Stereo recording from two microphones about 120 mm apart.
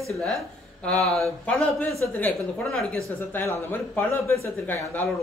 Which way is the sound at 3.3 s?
20° left (ahead or behind).